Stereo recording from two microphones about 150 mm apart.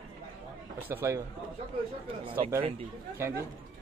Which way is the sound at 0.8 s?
15° right (ahead or behind).